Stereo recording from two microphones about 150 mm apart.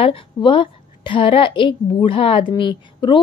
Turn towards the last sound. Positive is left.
turn(degrees=30)  # may be behind; listen again after turning